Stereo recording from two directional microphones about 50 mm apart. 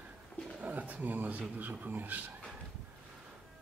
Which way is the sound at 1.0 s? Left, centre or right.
Right.